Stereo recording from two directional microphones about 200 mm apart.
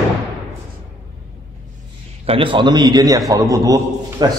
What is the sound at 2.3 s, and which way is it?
A man's voice, 25° right (ahead or behind).